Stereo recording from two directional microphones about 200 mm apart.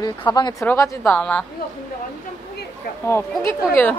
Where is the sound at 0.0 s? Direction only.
20° left (ahead or behind).